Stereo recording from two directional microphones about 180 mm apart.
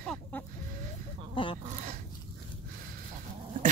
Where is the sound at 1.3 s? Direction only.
30° left (ahead or behind).